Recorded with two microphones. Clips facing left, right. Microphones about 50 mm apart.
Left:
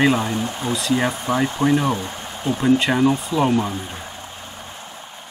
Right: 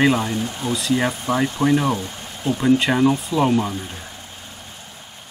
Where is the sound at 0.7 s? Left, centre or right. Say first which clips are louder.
Even; centre.